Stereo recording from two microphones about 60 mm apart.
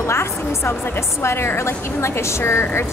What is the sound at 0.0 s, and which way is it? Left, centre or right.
A woman's voice, left.